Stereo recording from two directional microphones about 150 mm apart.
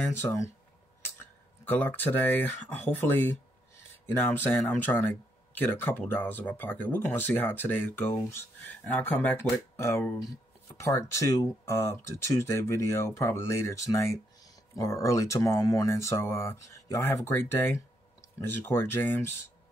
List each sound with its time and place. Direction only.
0.0 s speech: 15° left (ahead or behind)
1.7 s speech: 10° left (ahead or behind)